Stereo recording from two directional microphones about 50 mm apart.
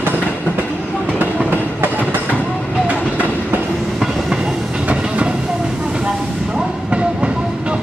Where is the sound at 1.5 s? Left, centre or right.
Right.